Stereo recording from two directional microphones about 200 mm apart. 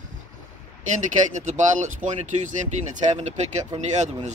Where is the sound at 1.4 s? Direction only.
40° right (ahead or behind).